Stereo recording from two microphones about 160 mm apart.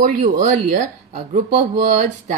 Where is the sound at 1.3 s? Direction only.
50° right (ahead or behind).